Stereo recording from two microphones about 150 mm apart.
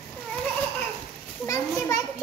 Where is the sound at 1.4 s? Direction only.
20° left (ahead or behind).